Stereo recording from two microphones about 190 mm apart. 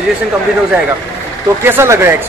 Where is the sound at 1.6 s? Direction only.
15° right (ahead or behind).